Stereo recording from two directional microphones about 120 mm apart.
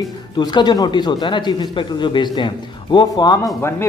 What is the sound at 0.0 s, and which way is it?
A man's voice, 35° left (ahead or behind).